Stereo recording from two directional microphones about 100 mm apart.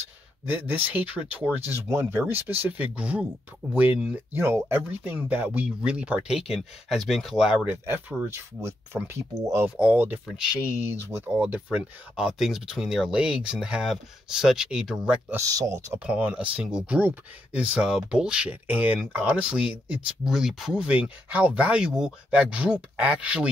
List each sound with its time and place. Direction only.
0.5 s speech: 15° right (ahead or behind)
1.6 s speech: 25° right (ahead or behind); by 7.5 s 5° right (ahead or behind)
7.6 s speech: 20° right (ahead or behind)
9.3 s speech: 35° right (ahead or behind)
9.7 s speech: 15° right (ahead or behind)
10.2 s speech: 10° right (ahead or behind)
11.1 s speech: 25° right (ahead or behind)
15.3 s speech: 35° right (ahead or behind)
15.9 s speech: 20° right (ahead or behind)